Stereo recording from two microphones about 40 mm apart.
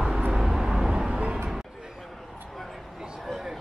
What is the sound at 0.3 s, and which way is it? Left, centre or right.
Vehicle, centre.